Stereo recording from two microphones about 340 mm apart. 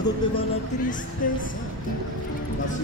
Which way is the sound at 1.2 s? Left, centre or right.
Left.